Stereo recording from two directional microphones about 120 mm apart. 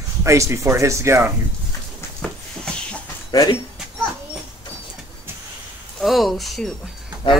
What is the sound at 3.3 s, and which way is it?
Speech, 35° left (ahead or behind).